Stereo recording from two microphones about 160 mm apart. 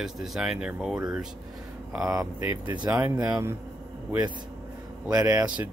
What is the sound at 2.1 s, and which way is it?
Speech, 20° right (ahead or behind).